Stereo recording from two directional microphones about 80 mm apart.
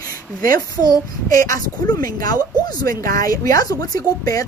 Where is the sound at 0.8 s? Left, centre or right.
Left.